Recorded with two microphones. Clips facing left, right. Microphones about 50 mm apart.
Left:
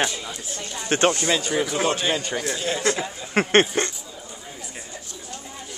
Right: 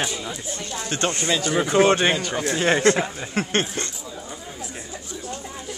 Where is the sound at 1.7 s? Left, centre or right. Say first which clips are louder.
Right 6 dB; right.